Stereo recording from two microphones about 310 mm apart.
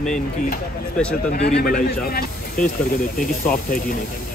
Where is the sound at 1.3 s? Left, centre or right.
Left.